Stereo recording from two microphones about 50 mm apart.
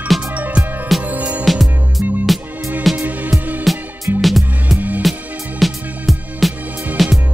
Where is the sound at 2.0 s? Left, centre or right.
Right.